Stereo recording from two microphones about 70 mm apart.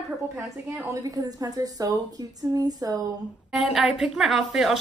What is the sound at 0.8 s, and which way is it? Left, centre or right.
A woman's voice, right.